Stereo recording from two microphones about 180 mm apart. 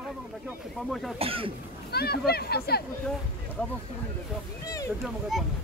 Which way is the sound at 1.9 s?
60° left (ahead or behind).